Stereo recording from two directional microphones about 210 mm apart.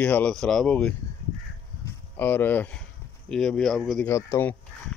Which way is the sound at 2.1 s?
10° left (ahead or behind).